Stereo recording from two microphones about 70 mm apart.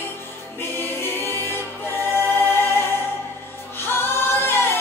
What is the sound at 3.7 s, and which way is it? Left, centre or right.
Choir, left.